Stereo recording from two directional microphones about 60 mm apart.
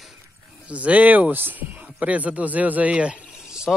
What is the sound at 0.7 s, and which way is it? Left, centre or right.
Speech, right.